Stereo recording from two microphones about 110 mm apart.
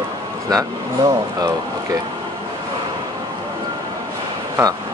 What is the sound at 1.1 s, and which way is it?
Speech, 35° right (ahead or behind).